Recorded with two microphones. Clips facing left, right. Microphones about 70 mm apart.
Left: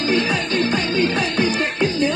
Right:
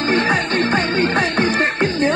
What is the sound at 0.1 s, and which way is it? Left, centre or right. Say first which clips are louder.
Music: right 3 dB; right.